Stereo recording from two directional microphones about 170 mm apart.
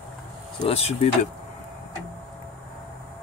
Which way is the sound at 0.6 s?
35° left (ahead or behind).